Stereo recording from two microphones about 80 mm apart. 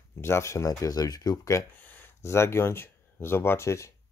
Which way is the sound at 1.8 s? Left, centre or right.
Left.